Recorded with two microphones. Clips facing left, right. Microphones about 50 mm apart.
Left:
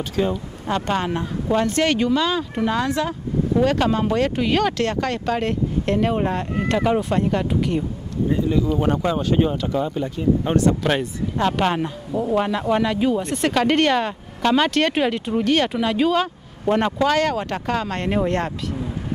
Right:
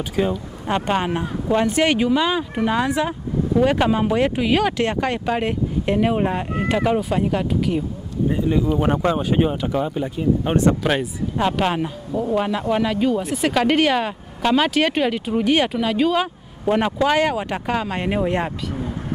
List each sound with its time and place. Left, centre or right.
0.2 s speech: centre
8.3 s speech: centre
10.8 s speech: centre
15.7 s speech: centre